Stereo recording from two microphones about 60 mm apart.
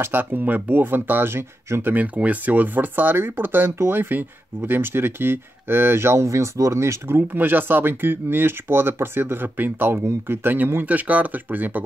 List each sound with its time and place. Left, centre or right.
0.0 s speech: right
2.1 s speech: right
7.2 s speech: right